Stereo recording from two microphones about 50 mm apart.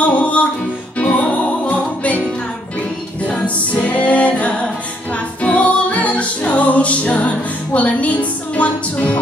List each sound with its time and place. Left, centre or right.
0.0 s music: left
3.3 s music: left